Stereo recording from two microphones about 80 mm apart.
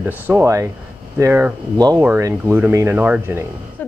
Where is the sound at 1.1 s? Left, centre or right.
Right.